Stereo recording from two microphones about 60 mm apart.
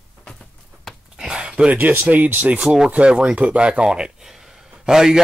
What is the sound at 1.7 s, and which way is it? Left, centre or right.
Speech, right.